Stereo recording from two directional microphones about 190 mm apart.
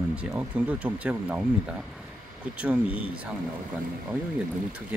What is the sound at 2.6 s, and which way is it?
Speech, 5° right (ahead or behind).